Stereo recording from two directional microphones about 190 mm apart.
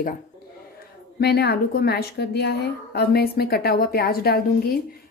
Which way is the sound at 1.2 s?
60° left (ahead or behind).